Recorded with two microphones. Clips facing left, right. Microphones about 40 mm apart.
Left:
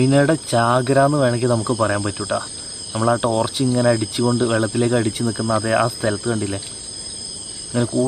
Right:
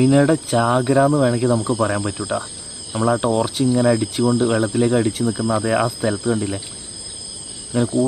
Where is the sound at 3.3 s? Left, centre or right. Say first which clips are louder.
Right 1 dB; centre.